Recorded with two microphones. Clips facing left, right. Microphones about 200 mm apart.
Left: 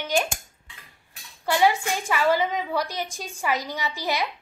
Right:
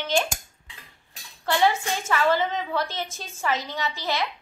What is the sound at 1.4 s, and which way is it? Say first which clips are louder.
A woman's voice: left 1 dB; 10° left (ahead or behind).